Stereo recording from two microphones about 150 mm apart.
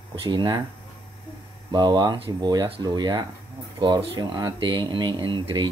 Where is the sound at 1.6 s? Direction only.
30° right (ahead or behind).